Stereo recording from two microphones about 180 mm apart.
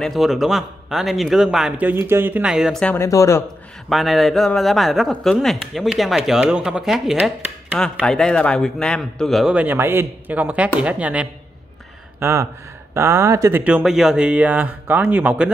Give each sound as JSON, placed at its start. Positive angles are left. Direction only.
{"t": 0.0, "sound": "a man's voice", "side_deg": 0}
{"t": 3.0, "sound": "speech", "side_deg": 15}
{"t": 3.9, "sound": "a man's voice", "side_deg": 0}
{"t": 7.8, "sound": "a man's voice", "side_deg": 5}